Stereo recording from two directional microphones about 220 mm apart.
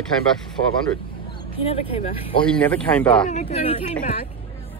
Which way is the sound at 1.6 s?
25° left (ahead or behind).